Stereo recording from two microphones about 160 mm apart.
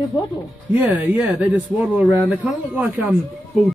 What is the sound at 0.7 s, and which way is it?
Speech, 10° right (ahead or behind).